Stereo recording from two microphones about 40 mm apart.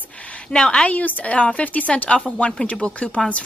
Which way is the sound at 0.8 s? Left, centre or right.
Left.